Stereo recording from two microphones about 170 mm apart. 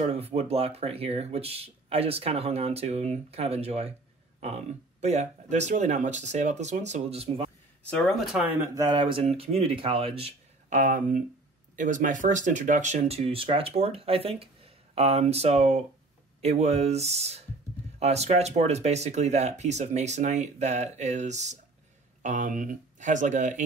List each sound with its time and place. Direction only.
0.0 s speech: 35° right (ahead or behind)
7.9 s speech: centre (ahead or behind)
8.7 s speech: 25° right (ahead or behind); by 23.6 s 50° right (ahead or behind)